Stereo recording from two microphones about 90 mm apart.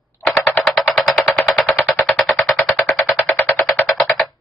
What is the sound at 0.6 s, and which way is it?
Machine gun, 5° left (ahead or behind).